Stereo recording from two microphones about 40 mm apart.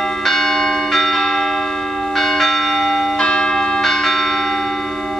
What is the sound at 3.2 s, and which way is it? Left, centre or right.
Church bell, left.